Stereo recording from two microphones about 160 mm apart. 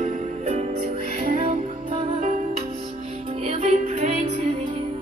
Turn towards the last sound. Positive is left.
turn(degrees=-45)  # may be behind; listen again after turning